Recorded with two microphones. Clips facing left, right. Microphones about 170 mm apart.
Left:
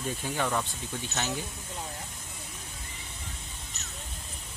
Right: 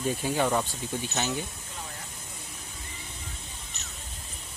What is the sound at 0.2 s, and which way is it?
Speech, 20° right (ahead or behind).